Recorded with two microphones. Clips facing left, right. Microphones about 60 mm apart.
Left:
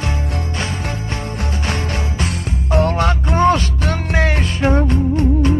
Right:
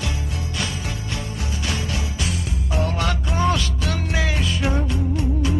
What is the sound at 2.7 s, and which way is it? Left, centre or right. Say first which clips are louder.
Music: left 8 dB; left.